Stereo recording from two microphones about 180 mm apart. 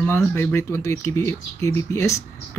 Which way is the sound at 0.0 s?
10° left (ahead or behind).